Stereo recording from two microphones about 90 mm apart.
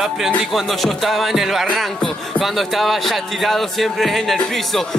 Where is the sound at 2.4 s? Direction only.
Centre (ahead or behind).